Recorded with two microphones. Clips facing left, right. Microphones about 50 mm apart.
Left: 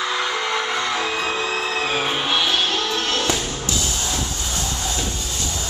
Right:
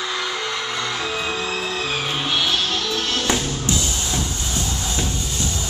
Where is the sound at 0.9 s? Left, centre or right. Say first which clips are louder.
Left 2 dB; left.